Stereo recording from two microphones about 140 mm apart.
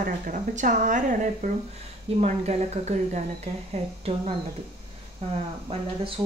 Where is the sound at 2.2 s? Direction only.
50° right (ahead or behind).